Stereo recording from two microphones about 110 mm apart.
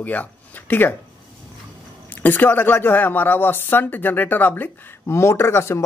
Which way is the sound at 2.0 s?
15° left (ahead or behind).